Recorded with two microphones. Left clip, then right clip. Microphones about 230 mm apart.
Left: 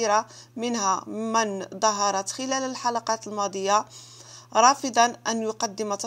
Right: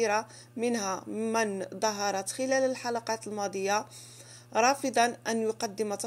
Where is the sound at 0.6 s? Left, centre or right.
Centre.